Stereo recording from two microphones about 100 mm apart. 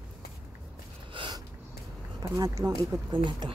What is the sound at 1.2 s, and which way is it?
Snort, 55° right (ahead or behind).